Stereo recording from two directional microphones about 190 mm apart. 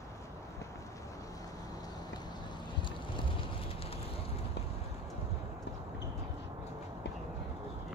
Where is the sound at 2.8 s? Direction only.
25° left (ahead or behind).